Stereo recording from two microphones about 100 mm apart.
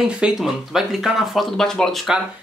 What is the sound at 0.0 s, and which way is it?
Speech, 5° right (ahead or behind).